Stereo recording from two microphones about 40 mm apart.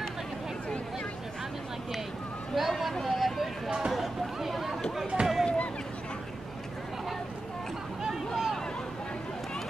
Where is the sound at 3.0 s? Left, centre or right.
Centre.